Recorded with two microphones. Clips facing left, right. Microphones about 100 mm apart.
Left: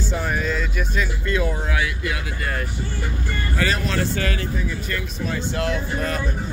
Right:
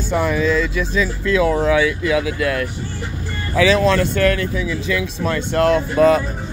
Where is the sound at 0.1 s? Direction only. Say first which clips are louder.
Right 9 dB; 90° right.